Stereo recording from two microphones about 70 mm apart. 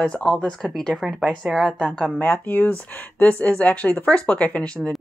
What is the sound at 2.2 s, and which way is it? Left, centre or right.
Speech, left.